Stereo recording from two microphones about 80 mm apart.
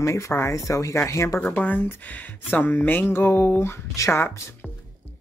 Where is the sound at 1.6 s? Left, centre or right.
Left.